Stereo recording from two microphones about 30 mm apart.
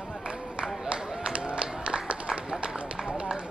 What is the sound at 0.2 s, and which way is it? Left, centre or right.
Run, right.